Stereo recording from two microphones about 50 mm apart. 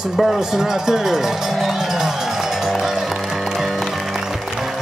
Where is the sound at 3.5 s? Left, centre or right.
Centre.